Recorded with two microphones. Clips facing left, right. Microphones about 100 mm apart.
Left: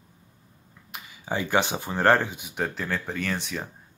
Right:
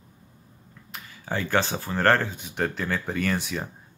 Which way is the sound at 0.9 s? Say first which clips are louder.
Left 1 dB; 15° left (ahead or behind).